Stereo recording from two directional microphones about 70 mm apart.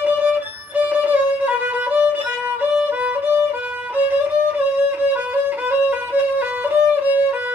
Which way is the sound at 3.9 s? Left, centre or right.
Right.